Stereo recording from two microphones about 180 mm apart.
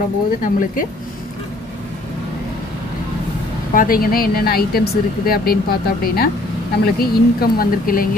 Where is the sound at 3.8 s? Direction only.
55° left (ahead or behind).